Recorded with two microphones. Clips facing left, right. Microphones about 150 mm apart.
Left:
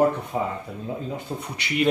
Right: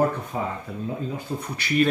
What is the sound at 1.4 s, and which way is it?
Speech, 20° left (ahead or behind).